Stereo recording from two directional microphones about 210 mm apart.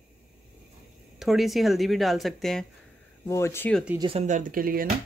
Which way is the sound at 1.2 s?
Centre (ahead or behind).